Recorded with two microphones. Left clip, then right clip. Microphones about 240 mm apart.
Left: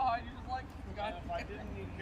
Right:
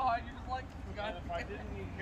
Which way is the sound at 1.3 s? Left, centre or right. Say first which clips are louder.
Right 1 dB; centre.